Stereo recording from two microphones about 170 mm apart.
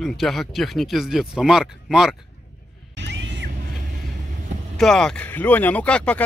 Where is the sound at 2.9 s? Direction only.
90° right.